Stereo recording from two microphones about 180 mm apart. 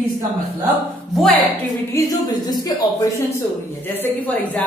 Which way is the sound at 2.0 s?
20° left (ahead or behind).